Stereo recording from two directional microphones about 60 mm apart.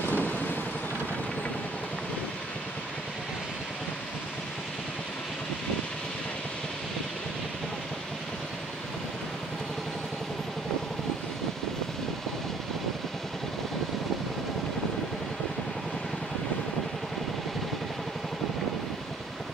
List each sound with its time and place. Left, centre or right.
0.1 s vehicle: left